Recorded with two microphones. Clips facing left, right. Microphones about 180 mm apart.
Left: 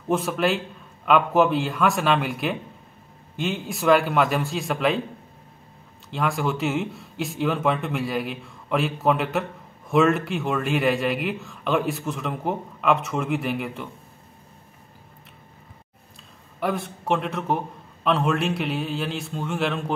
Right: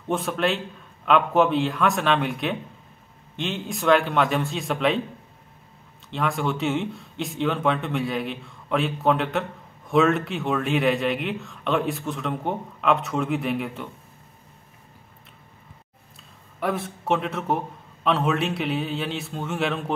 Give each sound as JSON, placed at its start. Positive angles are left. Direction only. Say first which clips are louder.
{"t": 0.1, "sound": "speech", "louder": "left 2 dB", "side_deg": 0}
{"t": 6.0, "sound": "speech", "louder": "left 1 dB", "side_deg": 0}
{"t": 16.5, "sound": "speech", "louder": "even", "side_deg": 0}